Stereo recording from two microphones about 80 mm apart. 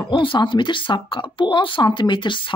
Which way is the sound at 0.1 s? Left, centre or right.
Left.